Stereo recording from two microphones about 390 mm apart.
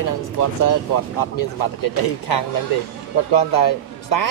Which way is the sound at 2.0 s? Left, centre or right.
Left.